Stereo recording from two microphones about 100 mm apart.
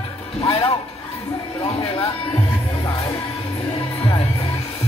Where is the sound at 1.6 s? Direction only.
85° left.